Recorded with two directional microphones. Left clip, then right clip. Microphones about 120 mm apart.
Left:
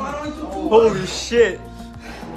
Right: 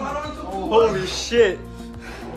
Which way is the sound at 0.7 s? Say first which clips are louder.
Left 3 dB; 15° right (ahead or behind).